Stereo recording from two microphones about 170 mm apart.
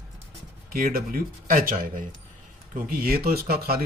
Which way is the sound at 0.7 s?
60° right (ahead or behind).